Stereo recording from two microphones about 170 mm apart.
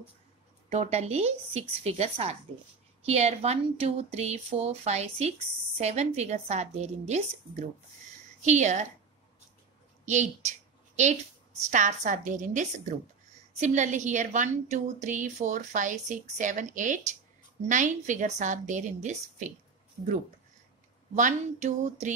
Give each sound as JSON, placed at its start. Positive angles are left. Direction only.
{"t": 0.7, "sound": "a woman's voice", "side_deg": -40}
{"t": 10.0, "sound": "a woman's voice", "side_deg": -45}
{"t": 11.7, "sound": "a woman's voice", "side_deg": -50}
{"t": 21.1, "sound": "a woman's voice", "side_deg": -45}